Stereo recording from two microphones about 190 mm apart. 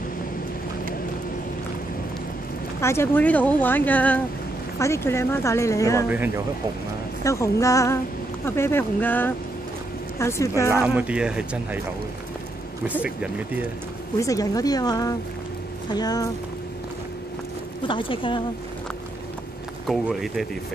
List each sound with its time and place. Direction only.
2.8 s speech: 15° left (ahead or behind)
6.0 s speech: 10° right (ahead or behind)
7.2 s speech: 15° left (ahead or behind)
10.7 s speech: 10° right (ahead or behind)
13.0 s speech: 5° right (ahead or behind)
14.2 s speech: 20° left (ahead or behind)
17.8 s speech: 25° left (ahead or behind)
19.9 s speech: centre (ahead or behind)